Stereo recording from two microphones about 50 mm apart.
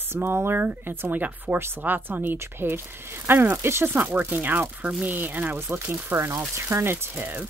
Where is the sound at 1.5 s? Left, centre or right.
Right.